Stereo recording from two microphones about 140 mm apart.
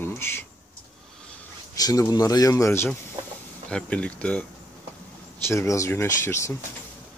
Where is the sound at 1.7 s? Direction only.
25° left (ahead or behind).